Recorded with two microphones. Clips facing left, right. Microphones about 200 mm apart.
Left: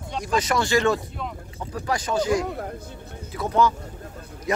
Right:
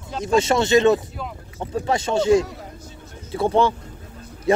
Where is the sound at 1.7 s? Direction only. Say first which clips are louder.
Right 4 dB; 25° right (ahead or behind).